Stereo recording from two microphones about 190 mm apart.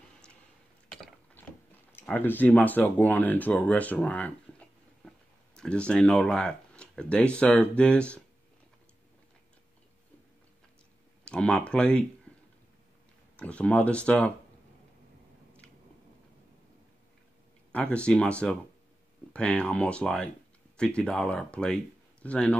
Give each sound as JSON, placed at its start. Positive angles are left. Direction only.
{"t": 0.8, "sound": "mechanisms", "side_deg": 5}
{"t": 1.9, "sound": "speech", "side_deg": 10}
{"t": 11.2, "sound": "speech", "side_deg": 5}
{"t": 13.4, "sound": "speech", "side_deg": 5}
{"t": 17.7, "sound": "speech", "side_deg": 5}